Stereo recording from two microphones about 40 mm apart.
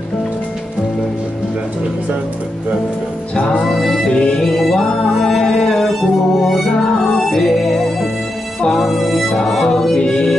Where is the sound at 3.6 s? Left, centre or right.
Centre.